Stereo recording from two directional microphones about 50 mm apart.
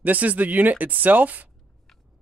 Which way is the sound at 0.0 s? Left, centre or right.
Right.